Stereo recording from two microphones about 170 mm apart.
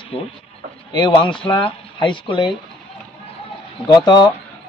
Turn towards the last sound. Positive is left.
turn(degrees=25)  # may be behind; listen again after turning